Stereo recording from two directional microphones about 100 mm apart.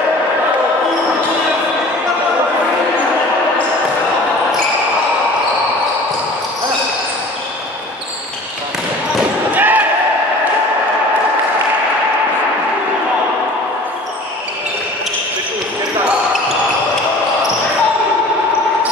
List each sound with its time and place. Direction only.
9.5 s slam: 15° right (ahead or behind)